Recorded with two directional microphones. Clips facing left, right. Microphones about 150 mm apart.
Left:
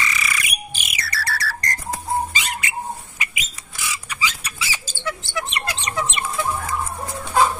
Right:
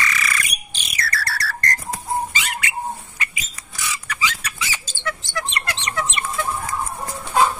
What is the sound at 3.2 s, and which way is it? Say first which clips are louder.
Bird: even; 15° left (ahead or behind).